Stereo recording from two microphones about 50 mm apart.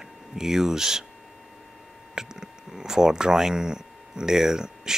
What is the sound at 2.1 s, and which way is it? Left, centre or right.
Speech, centre.